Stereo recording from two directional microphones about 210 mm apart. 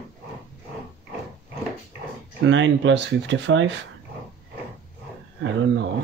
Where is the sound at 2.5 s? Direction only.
65° right (ahead or behind).